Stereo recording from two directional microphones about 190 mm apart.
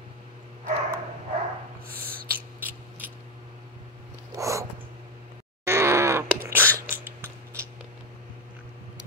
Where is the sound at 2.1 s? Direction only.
50° right (ahead or behind).